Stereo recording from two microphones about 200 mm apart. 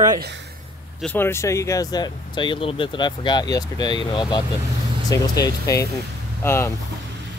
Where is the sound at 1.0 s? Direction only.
10° left (ahead or behind).